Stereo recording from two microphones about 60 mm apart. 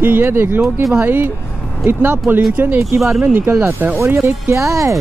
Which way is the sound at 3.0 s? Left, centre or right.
Centre.